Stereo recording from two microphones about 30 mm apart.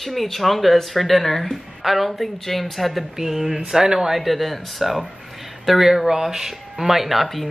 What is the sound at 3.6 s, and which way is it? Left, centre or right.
Speech, centre.